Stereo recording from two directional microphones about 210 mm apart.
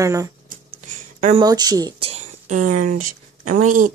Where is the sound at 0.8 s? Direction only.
35° right (ahead or behind).